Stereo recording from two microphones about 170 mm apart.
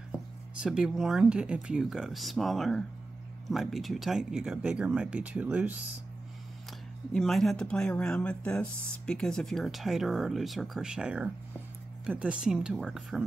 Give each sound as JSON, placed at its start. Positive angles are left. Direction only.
{"t": 0.6, "sound": "speech", "side_deg": -5}
{"t": 7.2, "sound": "speech", "side_deg": 0}